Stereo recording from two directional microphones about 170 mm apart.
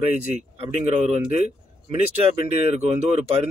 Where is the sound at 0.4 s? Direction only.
40° right (ahead or behind).